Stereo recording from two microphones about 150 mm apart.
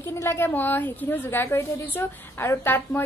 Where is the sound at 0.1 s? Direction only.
15° left (ahead or behind).